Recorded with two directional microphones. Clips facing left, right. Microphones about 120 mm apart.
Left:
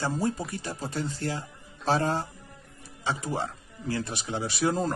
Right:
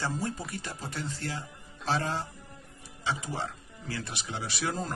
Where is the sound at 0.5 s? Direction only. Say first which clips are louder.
Left 4 dB; 35° left (ahead or behind).